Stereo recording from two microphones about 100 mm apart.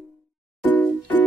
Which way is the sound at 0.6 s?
20° left (ahead or behind).